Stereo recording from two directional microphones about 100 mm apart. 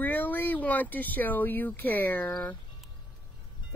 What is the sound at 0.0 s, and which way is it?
Speech, 20° left (ahead or behind).